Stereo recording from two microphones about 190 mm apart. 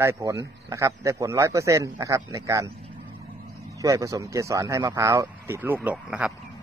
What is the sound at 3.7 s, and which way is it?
A man's voice, 15° right (ahead or behind).